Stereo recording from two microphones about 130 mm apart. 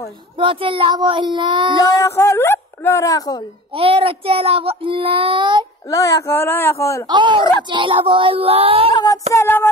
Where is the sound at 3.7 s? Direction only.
45° right (ahead or behind).